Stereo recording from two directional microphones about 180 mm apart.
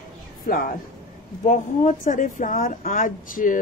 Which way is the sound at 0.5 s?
50° left (ahead or behind).